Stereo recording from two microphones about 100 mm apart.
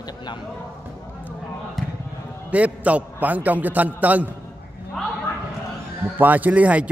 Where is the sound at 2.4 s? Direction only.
15° right (ahead or behind).